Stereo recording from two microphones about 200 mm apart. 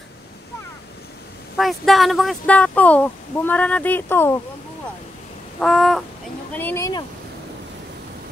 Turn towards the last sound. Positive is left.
turn(degrees=15)  # may be behind; listen again after turning